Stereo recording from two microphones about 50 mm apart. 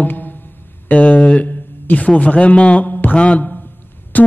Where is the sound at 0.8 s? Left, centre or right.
Left.